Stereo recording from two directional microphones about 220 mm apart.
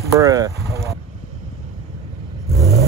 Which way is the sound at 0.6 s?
15° left (ahead or behind).